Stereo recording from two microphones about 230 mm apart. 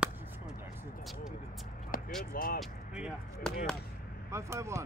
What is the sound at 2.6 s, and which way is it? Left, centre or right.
Speech, centre.